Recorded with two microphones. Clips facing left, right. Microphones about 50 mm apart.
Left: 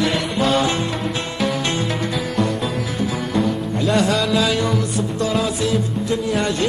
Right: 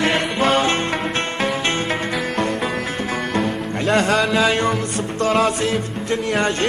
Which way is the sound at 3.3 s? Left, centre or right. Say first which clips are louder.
Left 1 dB; right.